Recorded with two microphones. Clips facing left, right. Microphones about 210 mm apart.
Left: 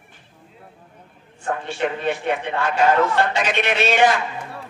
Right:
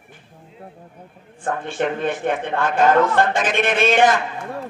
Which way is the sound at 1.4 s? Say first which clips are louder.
Right 1 dB; 50° right (ahead or behind).